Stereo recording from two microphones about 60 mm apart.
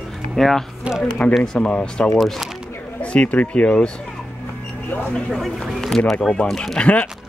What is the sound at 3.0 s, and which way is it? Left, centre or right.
Speech, left.